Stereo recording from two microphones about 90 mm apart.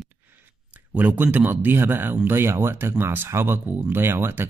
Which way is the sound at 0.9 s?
20° right (ahead or behind).